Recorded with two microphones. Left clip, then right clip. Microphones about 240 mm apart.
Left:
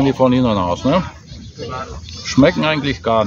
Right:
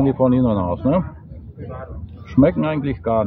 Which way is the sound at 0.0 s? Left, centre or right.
Centre.